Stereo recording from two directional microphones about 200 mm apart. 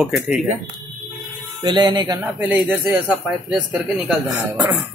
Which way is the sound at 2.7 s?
5° right (ahead or behind).